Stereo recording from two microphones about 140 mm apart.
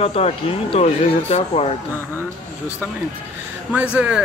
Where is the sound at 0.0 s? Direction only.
45° left (ahead or behind).